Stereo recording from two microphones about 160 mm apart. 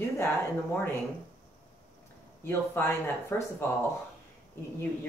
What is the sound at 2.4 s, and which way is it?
Speech, 15° left (ahead or behind).